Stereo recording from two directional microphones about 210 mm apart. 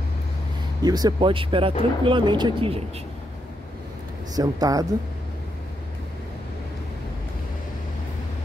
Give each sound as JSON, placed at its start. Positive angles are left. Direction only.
{"t": 0.8, "sound": "speech", "side_deg": -20}
{"t": 4.4, "sound": "speech", "side_deg": -15}